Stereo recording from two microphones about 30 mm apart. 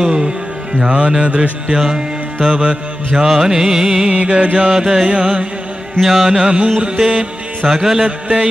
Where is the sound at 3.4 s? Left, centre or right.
Centre.